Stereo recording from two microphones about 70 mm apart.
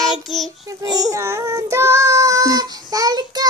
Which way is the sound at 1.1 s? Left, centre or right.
Right.